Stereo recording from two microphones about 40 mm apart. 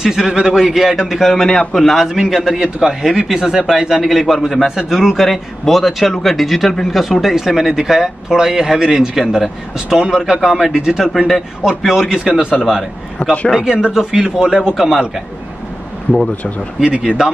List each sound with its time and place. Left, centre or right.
0.0 s speech: centre
0.9 s speech: centre
1.4 s a man's voice: centre
2.0 s speech: centre
5.2 s speech: centre
13.2 s a man's voice: left
13.7 s speech: centre
16.8 s speech: right